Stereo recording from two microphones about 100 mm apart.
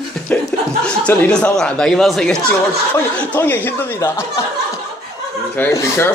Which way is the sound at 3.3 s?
20° left (ahead or behind).